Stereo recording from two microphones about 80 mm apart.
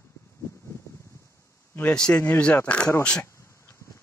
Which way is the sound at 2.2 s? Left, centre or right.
Left.